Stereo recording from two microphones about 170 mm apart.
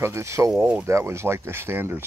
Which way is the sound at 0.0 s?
15° right (ahead or behind).